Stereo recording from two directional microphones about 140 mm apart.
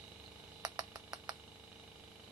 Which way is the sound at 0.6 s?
30° right (ahead or behind).